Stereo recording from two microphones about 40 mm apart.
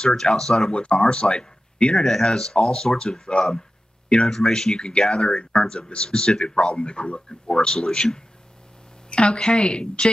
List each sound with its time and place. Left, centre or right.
0.0 s speech: centre
0.7 s speech: left
2.0 s speech: centre